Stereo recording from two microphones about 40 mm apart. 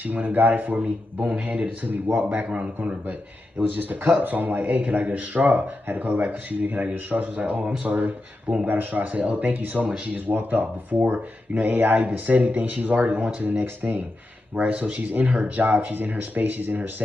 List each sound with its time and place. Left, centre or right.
0.0 s a man's voice: right
13.6 s speech: right
14.5 s a man's voice: right